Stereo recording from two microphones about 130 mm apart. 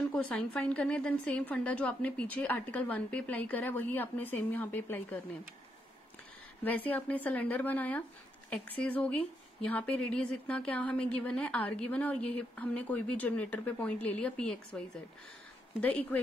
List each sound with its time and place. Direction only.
0.1 s a woman's voice: 10° left (ahead or behind)
6.6 s a woman's voice: 10° left (ahead or behind)
15.8 s a woman's voice: 10° left (ahead or behind)